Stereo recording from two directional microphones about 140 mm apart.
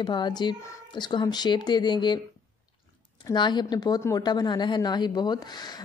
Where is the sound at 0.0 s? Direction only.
30° left (ahead or behind).